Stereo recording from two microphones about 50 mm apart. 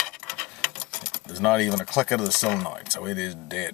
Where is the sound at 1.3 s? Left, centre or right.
Centre.